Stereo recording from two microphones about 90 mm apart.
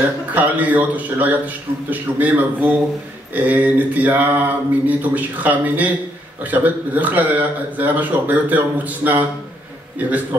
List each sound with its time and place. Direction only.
0.3 s a man's voice: 15° right (ahead or behind)